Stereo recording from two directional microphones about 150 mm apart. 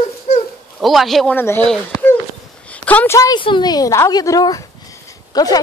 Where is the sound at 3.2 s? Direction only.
30° left (ahead or behind).